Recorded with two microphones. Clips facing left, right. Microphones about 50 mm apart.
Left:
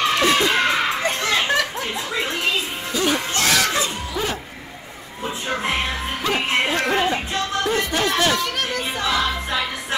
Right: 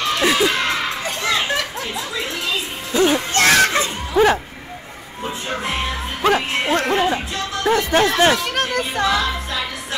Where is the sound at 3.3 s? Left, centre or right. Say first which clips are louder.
Right 5 dB; right.